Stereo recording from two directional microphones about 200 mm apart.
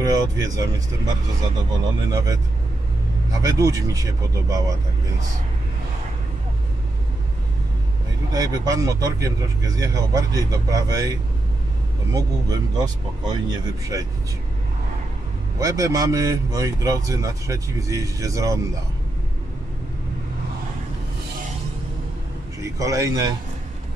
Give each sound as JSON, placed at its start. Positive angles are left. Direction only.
{"t": 0.0, "sound": "speech", "side_deg": -20}
{"t": 8.3, "sound": "speech", "side_deg": -20}
{"t": 12.1, "sound": "speech", "side_deg": -20}
{"t": 15.6, "sound": "speech", "side_deg": -15}
{"t": 22.6, "sound": "a man's voice", "side_deg": -15}